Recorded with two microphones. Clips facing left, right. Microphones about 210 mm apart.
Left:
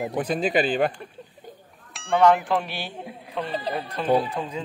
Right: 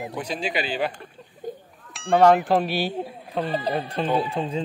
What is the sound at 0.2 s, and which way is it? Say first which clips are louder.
Speech: left 6 dB; 50° left (ahead or behind).